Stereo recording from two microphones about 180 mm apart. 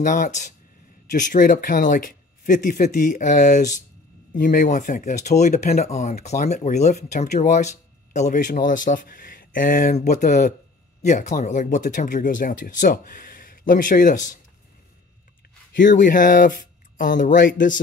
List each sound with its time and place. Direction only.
0.0 s speech: 45° left (ahead or behind)
15.9 s speech: 45° left (ahead or behind)